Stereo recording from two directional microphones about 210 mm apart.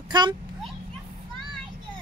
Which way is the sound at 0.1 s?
20° right (ahead or behind).